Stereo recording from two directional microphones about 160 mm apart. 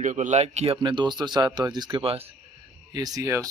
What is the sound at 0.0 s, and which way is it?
Speech, 50° right (ahead or behind).